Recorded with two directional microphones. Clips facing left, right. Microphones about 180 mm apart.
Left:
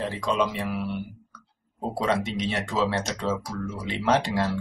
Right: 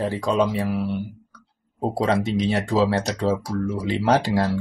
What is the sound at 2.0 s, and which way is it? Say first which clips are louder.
Speech: right 4 dB; 35° right (ahead or behind).